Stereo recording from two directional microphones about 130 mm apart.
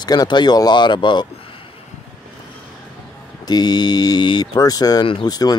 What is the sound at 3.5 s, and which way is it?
Speech, 30° left (ahead or behind).